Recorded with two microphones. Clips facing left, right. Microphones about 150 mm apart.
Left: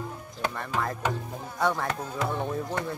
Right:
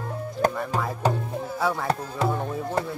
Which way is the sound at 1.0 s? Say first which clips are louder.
Right 9 dB; 35° right (ahead or behind).